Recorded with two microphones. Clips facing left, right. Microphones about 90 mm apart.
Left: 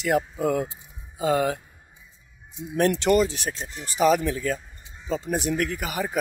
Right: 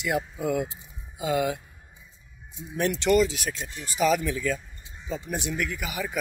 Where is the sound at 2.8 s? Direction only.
40° left (ahead or behind).